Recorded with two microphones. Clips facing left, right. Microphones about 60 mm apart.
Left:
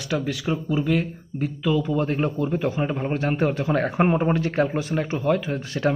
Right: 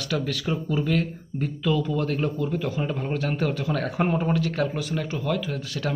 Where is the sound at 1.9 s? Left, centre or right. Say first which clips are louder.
Left 2 dB; left.